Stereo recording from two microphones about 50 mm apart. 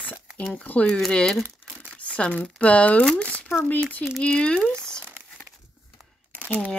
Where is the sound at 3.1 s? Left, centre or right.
Left.